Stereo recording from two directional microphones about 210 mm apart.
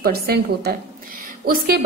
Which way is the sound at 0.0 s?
50° right (ahead or behind).